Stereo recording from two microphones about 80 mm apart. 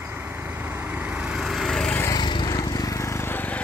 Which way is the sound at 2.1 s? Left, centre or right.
Left.